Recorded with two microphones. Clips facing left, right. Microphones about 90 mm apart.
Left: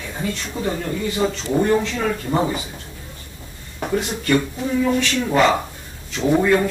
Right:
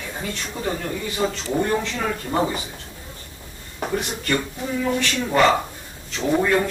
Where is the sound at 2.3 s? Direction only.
10° left (ahead or behind).